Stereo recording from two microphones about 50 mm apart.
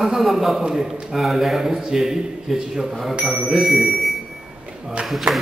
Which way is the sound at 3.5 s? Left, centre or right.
Centre.